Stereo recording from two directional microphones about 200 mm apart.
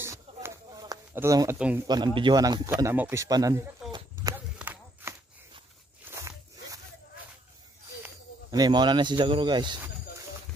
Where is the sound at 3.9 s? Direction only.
20° right (ahead or behind).